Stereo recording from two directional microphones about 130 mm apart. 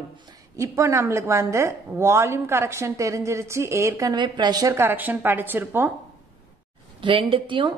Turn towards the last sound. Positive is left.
turn(degrees=-40)  # may be behind; listen again after turning